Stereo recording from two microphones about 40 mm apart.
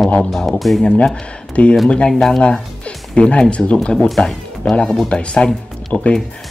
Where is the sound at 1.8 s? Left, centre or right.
Left.